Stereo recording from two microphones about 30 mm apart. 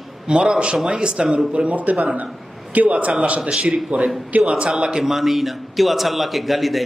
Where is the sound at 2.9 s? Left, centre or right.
Right.